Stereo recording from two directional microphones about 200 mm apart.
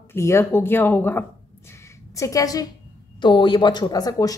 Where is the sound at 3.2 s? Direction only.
25° left (ahead or behind).